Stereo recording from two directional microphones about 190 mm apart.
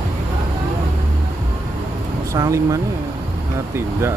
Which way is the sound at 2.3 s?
15° right (ahead or behind).